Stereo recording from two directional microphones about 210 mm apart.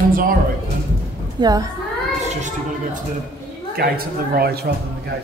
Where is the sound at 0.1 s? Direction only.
40° right (ahead or behind).